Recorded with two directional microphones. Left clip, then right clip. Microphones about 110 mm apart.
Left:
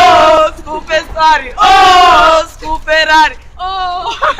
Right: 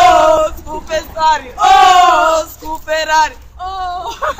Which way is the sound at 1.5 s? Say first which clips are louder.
Even; centre (ahead or behind).